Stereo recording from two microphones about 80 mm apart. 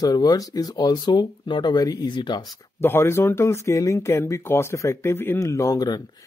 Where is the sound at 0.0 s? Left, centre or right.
Left.